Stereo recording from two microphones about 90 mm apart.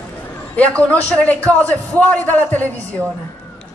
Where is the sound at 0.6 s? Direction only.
15° left (ahead or behind).